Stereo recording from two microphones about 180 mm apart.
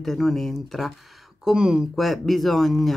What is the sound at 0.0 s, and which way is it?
Speech, centre (ahead or behind).